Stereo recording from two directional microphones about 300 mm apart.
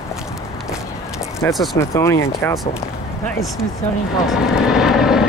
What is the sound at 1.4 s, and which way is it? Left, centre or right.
Speech, centre.